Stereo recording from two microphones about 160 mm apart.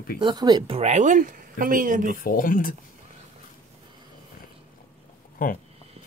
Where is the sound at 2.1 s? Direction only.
60° left (ahead or behind).